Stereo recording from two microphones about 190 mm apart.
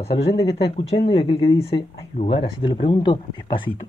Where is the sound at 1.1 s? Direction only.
30° left (ahead or behind).